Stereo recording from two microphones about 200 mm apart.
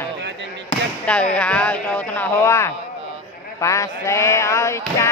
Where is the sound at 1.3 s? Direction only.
5° left (ahead or behind).